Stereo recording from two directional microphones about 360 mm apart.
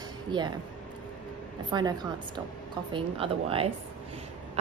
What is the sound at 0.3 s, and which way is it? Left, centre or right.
Speech, centre.